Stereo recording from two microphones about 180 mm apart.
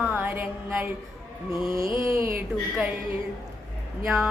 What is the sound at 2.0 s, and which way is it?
Speech, 15° right (ahead or behind).